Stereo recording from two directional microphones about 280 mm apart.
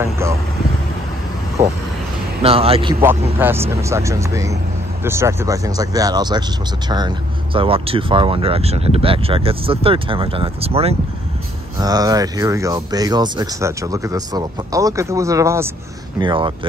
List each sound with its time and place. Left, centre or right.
0.0 s vehicle: centre
2.4 s speech: centre